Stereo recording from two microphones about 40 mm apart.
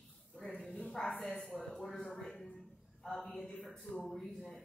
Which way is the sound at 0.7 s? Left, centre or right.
Centre.